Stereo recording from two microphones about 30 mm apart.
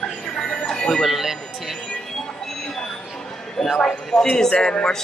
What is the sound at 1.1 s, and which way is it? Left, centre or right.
Speech, centre.